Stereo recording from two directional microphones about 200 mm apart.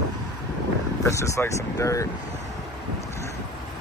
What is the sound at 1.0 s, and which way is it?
Vehicle, 15° left (ahead or behind).